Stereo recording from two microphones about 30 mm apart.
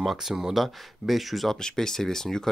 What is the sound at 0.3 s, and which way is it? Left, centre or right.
Speech, centre.